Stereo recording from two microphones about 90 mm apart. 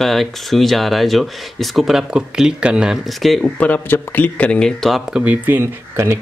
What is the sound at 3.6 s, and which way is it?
Speech, 15° left (ahead or behind).